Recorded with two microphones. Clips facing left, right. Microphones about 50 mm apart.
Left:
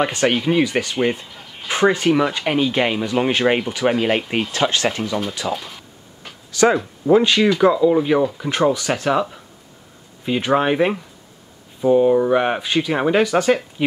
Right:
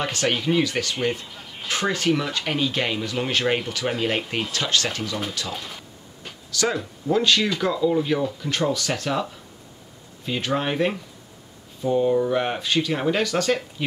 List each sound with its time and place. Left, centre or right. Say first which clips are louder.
0.0 s speech: left 6 dB; centre
1.3 s a sound: left 1 dB; centre
1.7 s speech: left 6 dB; left
4.5 s speech: left 5 dB; left
5.5 s speech: left 7 dB; centre
6.5 s speech: left 9 dB; left